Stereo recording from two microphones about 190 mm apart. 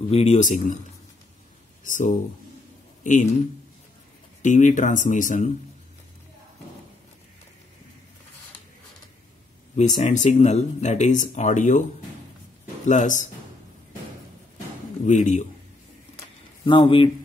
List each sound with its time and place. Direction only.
0.1 s speech: 35° left (ahead or behind)
1.9 s a man's voice: 40° left (ahead or behind)
4.4 s speech: 40° left (ahead or behind)
9.8 s speech: 40° left (ahead or behind)
12.8 s speech: 40° left (ahead or behind)
15.0 s speech: 40° left (ahead or behind)
16.6 s speech: 25° left (ahead or behind)